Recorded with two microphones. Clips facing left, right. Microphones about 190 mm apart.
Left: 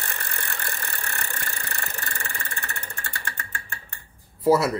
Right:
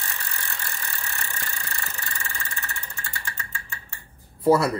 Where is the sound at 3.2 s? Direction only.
55° left (ahead or behind).